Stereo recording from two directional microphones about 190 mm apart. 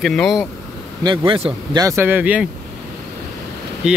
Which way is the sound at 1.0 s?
25° right (ahead or behind).